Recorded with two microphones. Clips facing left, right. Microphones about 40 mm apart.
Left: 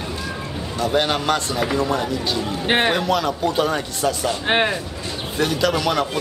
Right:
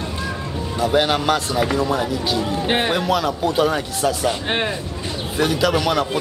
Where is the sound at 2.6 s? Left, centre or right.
Centre.